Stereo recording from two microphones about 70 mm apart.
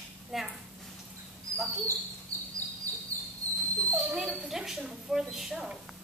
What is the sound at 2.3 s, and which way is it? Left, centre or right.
Bird, right.